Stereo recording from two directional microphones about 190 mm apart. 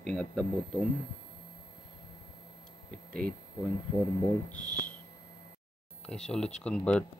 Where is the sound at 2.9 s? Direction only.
5° left (ahead or behind).